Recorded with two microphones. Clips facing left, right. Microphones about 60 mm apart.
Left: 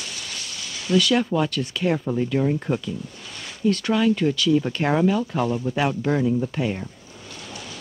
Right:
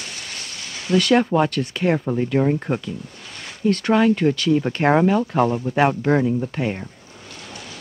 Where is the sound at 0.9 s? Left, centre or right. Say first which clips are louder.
Right 3 dB; right.